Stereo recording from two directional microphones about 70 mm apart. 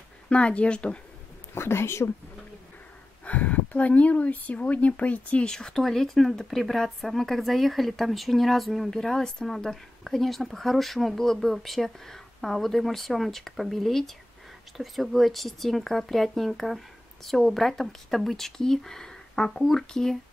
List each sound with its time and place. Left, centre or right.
0.3 s speech: centre
1.5 s speech: left
3.3 s speech: left; by 20.2 s centre